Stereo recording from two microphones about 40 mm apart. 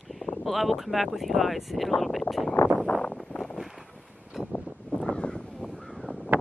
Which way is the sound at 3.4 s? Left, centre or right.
Centre.